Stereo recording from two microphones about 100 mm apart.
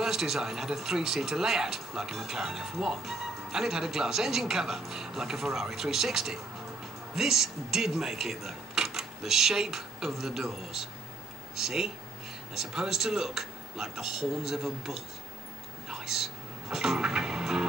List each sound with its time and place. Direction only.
0.0 s speech: 5° right (ahead or behind)
15.9 s music: 5° right (ahead or behind)